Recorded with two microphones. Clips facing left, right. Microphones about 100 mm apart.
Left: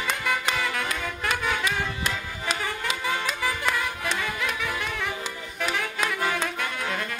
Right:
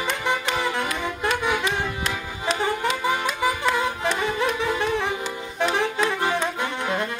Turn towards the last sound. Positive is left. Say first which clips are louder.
# right 4 dB
turn(degrees=-25)  # may be behind; listen again after turning